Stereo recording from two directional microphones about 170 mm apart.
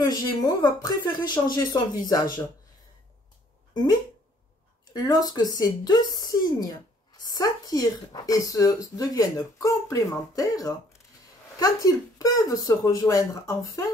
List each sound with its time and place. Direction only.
0.0 s speech: 20° left (ahead or behind)
3.7 s speech: 25° left (ahead or behind)